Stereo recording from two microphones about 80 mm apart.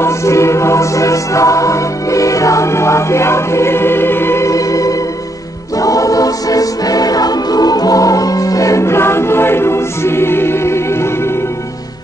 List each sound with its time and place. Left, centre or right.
0.0 s music: left
5.8 s choir: left